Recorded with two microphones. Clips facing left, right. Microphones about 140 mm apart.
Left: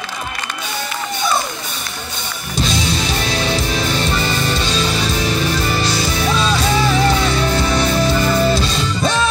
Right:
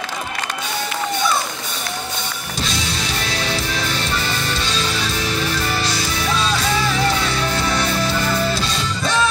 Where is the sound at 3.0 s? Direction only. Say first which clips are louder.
Left 4 dB; 20° left (ahead or behind).